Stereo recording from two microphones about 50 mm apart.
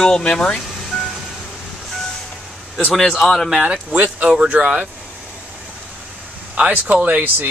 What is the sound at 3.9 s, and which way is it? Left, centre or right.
Speech, right.